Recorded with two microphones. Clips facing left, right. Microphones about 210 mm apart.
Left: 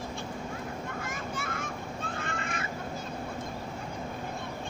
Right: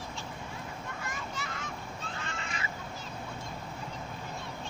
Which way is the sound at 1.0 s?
50° left (ahead or behind).